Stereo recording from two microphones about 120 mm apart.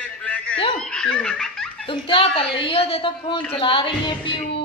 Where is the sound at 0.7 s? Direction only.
5° left (ahead or behind).